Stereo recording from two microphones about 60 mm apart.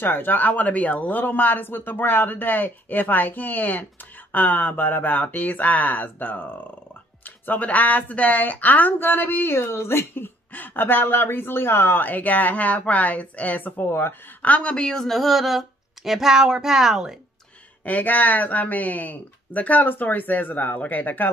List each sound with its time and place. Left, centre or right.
0.0 s speech: left
14.4 s speech: left; by 17.2 s centre
17.8 s speech: left